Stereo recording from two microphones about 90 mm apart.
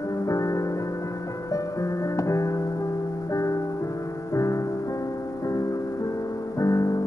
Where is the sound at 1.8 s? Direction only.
35° left (ahead or behind).